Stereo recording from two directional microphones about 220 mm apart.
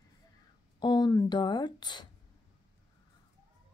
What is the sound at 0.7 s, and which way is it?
Speech, 20° left (ahead or behind).